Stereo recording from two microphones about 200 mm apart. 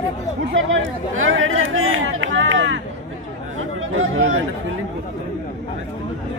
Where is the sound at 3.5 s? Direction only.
85° right.